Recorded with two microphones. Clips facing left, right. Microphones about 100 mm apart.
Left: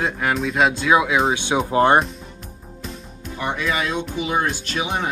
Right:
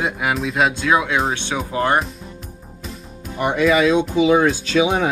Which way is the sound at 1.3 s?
15° left (ahead or behind).